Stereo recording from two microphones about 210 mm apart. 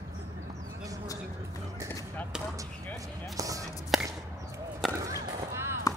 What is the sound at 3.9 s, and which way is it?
Chop, centre (ahead or behind).